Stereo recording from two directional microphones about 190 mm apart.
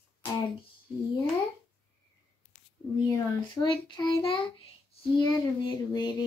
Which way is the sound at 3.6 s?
25° left (ahead or behind).